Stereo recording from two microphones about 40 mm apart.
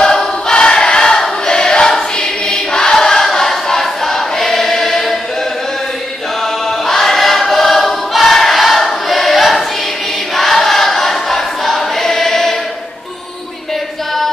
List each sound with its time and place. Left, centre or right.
0.0 s choir: centre
6.4 s choir: centre